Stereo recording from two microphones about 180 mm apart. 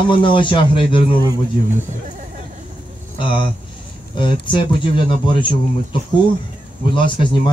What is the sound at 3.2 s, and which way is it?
Speech, 25° left (ahead or behind).